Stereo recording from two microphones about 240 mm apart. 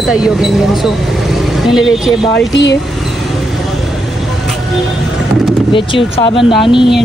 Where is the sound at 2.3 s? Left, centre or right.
Left.